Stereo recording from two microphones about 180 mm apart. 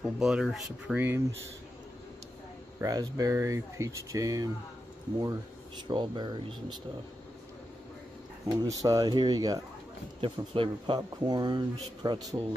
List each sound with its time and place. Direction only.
0.0 s speech: 5° right (ahead or behind)
2.8 s speech: 20° right (ahead or behind)
5.9 s speech: 25° right (ahead or behind)
8.5 s speech: 20° right (ahead or behind)